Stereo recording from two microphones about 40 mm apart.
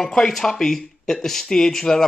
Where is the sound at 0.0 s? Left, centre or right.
Centre.